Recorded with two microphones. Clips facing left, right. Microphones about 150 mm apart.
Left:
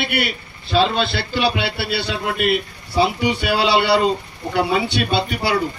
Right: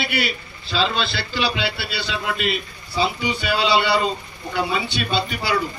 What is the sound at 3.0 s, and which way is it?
A man's voice, 65° left (ahead or behind).